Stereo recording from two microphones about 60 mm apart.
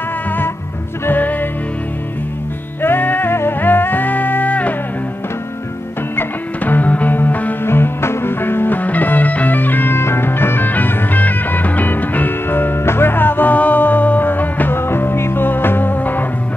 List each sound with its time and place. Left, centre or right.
1.0 s music: left
2.8 s music: left
6.1 s music: left
7.6 s music: left